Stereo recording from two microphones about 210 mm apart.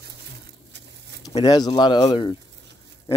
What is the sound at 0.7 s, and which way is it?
Patter, 55° right (ahead or behind).